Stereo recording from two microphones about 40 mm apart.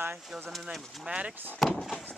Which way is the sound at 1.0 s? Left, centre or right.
Right.